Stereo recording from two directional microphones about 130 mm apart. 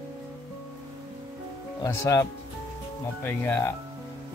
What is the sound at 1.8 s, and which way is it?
Speech, 25° left (ahead or behind).